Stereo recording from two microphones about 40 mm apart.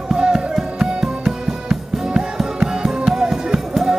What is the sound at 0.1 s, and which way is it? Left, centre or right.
Music, centre.